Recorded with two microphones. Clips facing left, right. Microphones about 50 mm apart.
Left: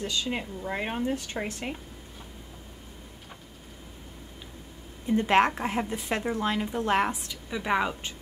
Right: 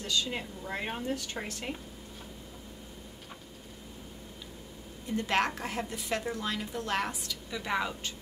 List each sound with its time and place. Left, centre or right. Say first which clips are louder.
0.0 s a woman's voice: left 2 dB; centre
5.0 s a woman's voice: left 7 dB; left